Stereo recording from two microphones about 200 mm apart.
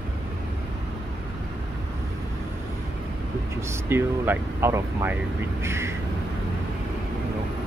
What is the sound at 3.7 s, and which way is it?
Speech, 10° right (ahead or behind).